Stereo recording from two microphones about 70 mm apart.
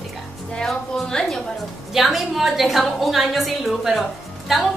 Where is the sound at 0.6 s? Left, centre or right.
Centre.